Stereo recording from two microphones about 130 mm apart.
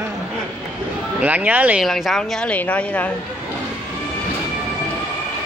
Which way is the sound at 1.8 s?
Centre (ahead or behind).